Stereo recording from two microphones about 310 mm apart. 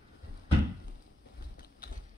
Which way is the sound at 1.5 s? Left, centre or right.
Left.